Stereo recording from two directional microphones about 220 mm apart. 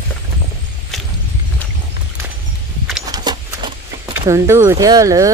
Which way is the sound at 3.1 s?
15° right (ahead or behind).